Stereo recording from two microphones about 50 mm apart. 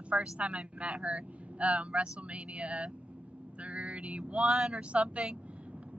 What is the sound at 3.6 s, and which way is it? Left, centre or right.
Vehicle, right.